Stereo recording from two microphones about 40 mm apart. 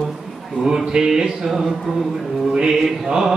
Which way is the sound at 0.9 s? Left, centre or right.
Centre.